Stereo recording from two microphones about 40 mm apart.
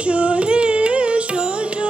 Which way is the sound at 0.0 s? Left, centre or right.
Right.